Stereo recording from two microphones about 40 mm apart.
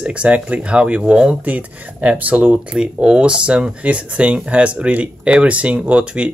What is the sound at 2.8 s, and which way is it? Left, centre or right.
Speech, right.